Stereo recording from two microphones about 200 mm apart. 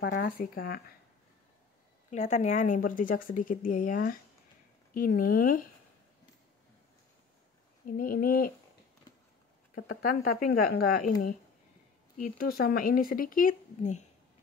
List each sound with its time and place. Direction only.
0.0 s speech: 55° left (ahead or behind)
2.0 s speech: 35° left (ahead or behind)
7.8 s speech: 45° left (ahead or behind)
9.8 s speech: 50° left (ahead or behind)